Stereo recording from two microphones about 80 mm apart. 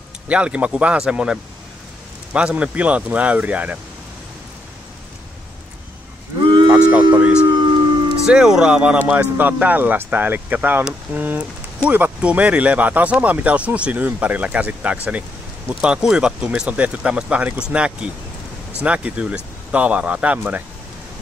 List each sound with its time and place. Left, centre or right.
0.3 s speech: centre
6.7 s a sound: centre
8.2 s speech: centre